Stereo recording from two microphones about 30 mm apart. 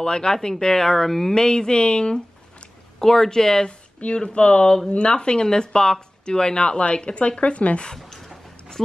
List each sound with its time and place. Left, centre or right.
0.0 s speech: left; by 1.3 s centre
1.3 s speech: left
3.0 s speech: centre
4.1 s speech: left